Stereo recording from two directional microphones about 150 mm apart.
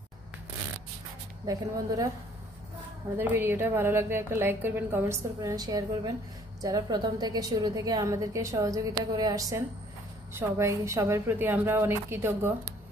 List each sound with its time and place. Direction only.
1.4 s a woman's voice: 25° right (ahead or behind)
3.2 s a woman's voice: 15° right (ahead or behind)